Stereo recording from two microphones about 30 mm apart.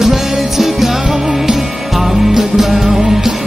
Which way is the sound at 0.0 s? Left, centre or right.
Centre.